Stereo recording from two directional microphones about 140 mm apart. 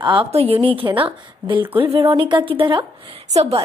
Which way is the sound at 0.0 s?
35° right (ahead or behind).